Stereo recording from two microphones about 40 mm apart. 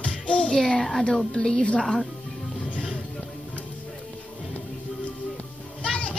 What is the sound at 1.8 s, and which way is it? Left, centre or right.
Speech, centre.